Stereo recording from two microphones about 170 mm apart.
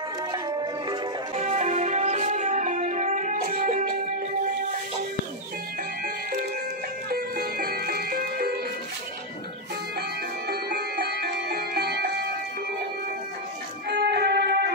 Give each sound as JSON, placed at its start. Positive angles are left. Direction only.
{"t": 0.3, "sound": "music", "side_deg": -25}
{"t": 1.3, "sound": "music", "side_deg": -40}
{"t": 7.1, "sound": "music", "side_deg": -60}
{"t": 10.5, "sound": "music", "side_deg": -70}
{"t": 13.8, "sound": "music", "side_deg": -80}